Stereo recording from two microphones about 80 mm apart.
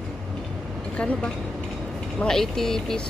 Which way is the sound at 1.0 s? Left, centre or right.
Centre.